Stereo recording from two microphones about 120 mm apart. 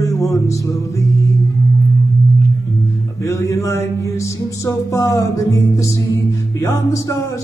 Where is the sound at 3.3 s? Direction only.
25° left (ahead or behind).